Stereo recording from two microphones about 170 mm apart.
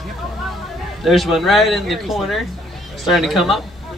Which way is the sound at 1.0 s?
Centre (ahead or behind).